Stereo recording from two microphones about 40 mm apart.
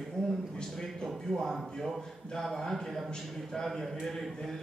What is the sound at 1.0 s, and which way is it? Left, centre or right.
A man's voice, centre.